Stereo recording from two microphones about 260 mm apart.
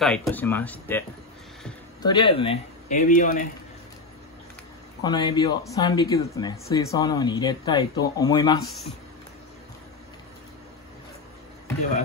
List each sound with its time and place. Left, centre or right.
0.0 s speech: centre
2.0 s speech: centre
5.0 s speech: centre